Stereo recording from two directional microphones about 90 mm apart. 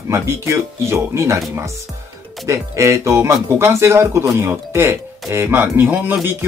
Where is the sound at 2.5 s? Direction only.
35° right (ahead or behind).